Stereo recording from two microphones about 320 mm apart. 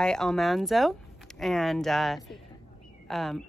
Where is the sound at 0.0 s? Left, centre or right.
Centre.